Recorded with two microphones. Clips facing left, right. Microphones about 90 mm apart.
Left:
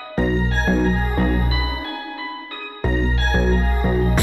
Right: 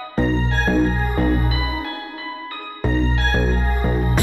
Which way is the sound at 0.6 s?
30° left (ahead or behind).